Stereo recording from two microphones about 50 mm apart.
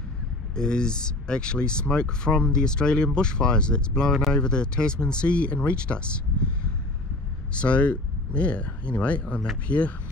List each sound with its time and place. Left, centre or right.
0.6 s speech: centre
7.6 s speech: left